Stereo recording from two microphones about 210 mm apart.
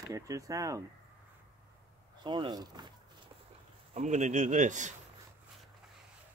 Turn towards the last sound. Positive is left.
turn(degrees=-35)  # may be behind; listen again after turning